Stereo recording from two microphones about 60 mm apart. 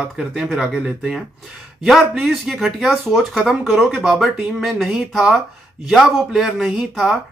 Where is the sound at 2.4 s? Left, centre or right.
Centre.